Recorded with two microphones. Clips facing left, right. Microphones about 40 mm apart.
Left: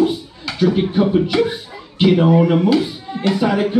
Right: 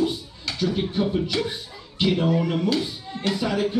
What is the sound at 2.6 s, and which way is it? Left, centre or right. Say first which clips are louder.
Speech: left 8 dB; centre.